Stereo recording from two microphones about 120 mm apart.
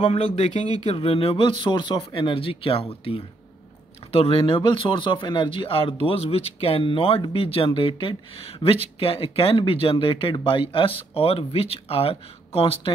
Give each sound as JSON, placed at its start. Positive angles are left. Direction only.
{"t": 0.0, "sound": "speech", "side_deg": 60}
{"t": 0.8, "sound": "speech", "side_deg": 55}